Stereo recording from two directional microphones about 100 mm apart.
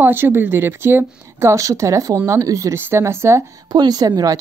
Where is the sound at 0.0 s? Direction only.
25° right (ahead or behind).